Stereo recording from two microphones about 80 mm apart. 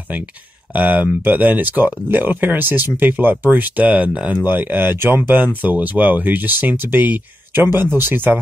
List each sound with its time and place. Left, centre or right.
0.1 s speech: centre